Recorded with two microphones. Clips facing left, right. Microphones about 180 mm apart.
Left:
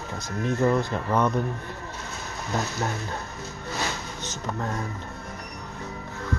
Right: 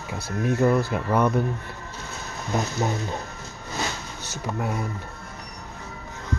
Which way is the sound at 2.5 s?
15° right (ahead or behind).